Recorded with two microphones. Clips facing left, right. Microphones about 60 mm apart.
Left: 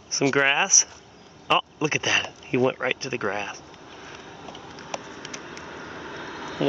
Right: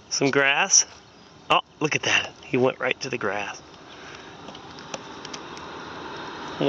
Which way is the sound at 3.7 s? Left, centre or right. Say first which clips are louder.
Even; centre.